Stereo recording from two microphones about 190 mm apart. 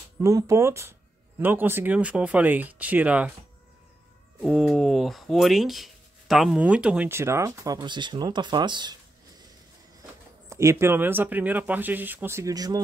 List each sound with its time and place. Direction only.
0.2 s speech: 15° right (ahead or behind)
4.4 s speech: centre (ahead or behind); by 8.9 s 25° right (ahead or behind)
10.5 s speech: 15° right (ahead or behind)